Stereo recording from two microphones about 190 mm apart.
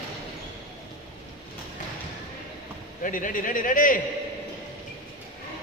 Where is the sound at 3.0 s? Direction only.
45° left (ahead or behind).